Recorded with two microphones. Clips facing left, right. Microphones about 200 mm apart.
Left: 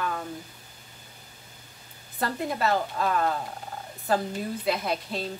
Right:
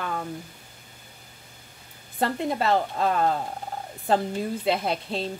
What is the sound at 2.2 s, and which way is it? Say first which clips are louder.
Speech: right 3 dB; 25° right (ahead or behind).